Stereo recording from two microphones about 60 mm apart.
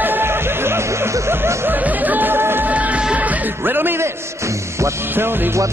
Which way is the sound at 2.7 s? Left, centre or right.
Right.